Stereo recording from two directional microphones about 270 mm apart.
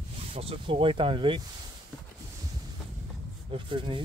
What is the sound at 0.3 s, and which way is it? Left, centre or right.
Speech, right.